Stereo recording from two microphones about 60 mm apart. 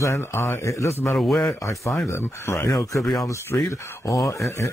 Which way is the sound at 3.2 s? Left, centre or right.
Left.